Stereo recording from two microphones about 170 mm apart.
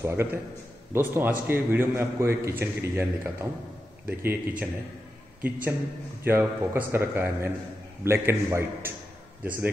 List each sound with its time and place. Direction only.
0.0 s a man's voice: 15° right (ahead or behind)